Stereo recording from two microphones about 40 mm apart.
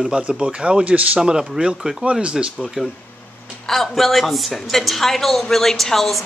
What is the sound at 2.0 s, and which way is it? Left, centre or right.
Speech, right.